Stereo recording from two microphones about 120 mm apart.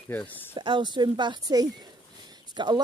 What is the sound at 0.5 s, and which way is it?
Speech, 40° right (ahead or behind).